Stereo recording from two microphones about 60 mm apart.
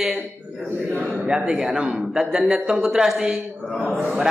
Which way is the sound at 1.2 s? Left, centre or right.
Centre.